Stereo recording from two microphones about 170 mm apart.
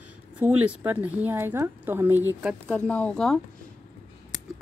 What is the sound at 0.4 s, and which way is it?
Speech, 10° right (ahead or behind).